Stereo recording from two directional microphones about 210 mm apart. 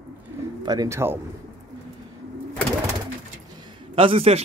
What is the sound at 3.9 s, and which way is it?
Speech, 25° right (ahead or behind).